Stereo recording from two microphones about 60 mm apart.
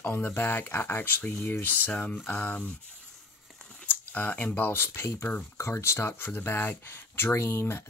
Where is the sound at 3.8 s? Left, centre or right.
Left.